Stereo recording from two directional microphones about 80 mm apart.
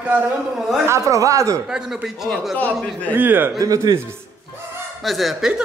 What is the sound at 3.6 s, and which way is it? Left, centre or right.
Speech, right.